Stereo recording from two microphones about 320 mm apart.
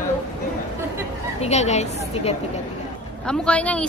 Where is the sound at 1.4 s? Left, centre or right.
Left.